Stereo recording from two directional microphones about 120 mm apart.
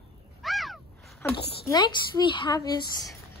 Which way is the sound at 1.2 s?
20° left (ahead or behind).